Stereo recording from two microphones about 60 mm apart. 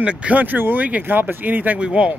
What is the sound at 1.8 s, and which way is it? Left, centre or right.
Speech, centre.